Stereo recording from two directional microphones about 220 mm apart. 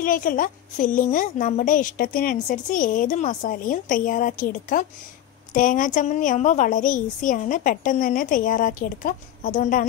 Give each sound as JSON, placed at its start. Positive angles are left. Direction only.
{"t": 0.0, "sound": "a woman's voice", "side_deg": 40}